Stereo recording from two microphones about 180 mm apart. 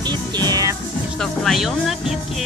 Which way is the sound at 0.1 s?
20° right (ahead or behind).